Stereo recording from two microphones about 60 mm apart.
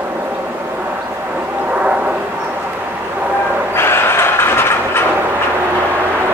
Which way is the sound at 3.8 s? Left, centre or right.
Left.